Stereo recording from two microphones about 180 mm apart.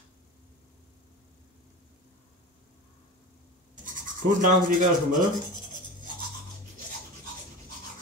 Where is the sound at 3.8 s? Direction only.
45° right (ahead or behind).